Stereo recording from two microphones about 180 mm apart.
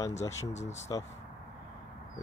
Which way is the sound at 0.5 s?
40° left (ahead or behind).